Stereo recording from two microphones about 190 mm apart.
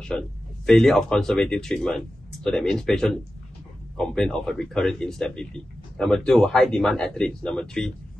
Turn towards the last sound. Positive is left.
turn(degrees=5)  # may be behind; listen again after turning